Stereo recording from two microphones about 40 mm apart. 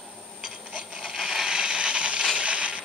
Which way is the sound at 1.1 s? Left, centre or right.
Centre.